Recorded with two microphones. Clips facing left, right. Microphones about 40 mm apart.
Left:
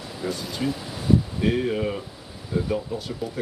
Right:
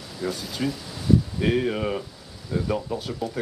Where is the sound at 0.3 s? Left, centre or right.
Centre.